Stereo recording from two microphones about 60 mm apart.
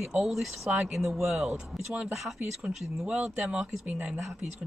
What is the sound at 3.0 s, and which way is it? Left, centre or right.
Speech, centre.